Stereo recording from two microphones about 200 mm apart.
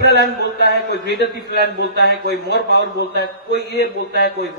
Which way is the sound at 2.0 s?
55° left (ahead or behind).